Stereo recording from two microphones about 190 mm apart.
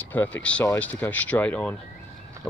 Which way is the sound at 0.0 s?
10° left (ahead or behind).